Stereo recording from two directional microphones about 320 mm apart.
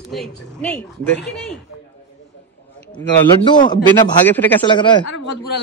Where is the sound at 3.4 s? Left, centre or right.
Centre.